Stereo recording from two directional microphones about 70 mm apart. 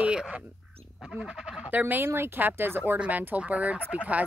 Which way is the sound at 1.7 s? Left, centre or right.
Right.